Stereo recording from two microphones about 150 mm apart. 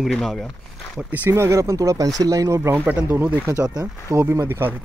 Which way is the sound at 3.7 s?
25° right (ahead or behind).